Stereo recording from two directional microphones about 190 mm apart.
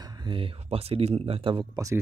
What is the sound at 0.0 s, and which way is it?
Speech, 20° right (ahead or behind).